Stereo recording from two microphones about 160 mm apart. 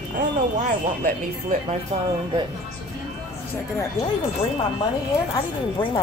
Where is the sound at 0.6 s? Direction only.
50° right (ahead or behind).